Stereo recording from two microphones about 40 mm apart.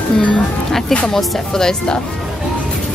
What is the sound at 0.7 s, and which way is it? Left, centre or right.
Speech, centre.